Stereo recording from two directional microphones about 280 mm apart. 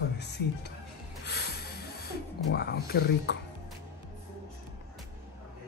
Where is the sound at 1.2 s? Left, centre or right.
Left.